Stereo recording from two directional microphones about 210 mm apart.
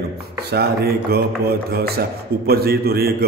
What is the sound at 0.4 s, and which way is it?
A man's voice, 50° right (ahead or behind).